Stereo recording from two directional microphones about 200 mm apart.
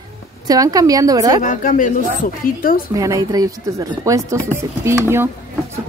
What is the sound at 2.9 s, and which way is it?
Speech, 15° right (ahead or behind).